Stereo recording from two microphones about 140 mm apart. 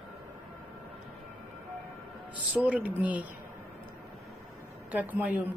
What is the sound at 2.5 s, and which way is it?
Speech, 10° right (ahead or behind).